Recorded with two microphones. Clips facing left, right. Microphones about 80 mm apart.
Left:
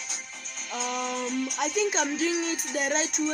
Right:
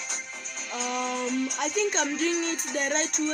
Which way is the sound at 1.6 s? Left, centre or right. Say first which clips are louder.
Left 3 dB; centre.